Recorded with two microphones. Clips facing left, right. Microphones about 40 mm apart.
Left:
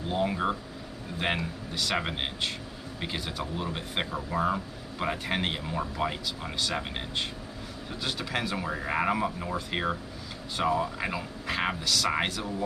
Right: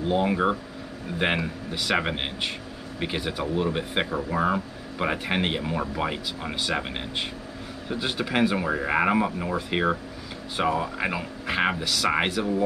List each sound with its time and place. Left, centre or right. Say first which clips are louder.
0.1 s speech: right 5 dB; centre